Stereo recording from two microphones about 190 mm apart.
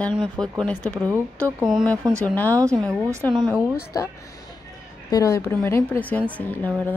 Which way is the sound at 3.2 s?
10° left (ahead or behind).